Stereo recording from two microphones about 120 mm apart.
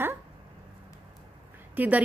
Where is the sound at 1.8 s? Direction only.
15° right (ahead or behind).